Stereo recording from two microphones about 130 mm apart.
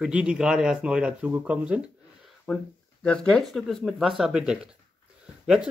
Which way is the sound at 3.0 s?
5° left (ahead or behind).